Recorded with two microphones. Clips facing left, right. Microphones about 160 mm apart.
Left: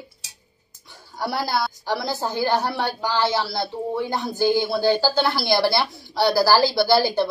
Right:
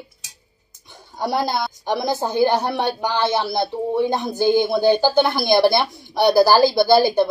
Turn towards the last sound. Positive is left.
turn(degrees=-15)  # may be behind; listen again after turning